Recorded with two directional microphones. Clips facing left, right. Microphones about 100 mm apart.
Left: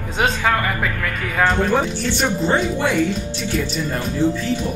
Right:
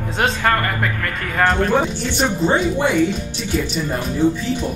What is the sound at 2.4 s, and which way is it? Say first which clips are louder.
Speech: right 3 dB; 20° right (ahead or behind).